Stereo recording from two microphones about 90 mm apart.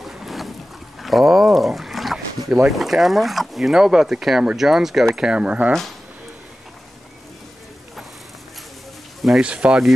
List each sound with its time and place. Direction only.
0.0 s boat: centre (ahead or behind)
1.0 s speech: centre (ahead or behind)
9.4 s speech: 10° right (ahead or behind)